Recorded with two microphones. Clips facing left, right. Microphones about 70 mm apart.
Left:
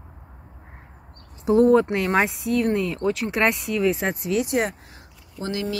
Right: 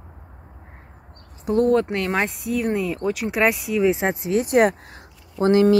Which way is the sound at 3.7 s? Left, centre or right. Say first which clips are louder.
Right 3 dB; right.